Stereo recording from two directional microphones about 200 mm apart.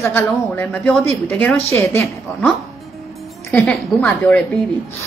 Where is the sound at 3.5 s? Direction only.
5° left (ahead or behind).